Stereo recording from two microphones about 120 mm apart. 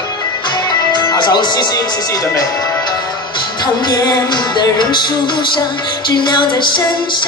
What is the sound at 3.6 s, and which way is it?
Music, 35° left (ahead or behind).